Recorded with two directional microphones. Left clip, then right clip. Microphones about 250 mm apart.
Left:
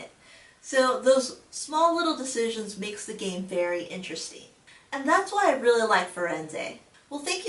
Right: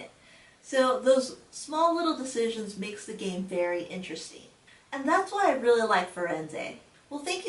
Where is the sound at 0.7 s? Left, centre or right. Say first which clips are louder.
Left 2 dB; centre.